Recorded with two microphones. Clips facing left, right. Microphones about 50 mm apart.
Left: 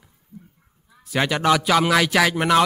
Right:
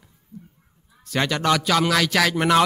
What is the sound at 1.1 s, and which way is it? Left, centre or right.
A man's voice, centre.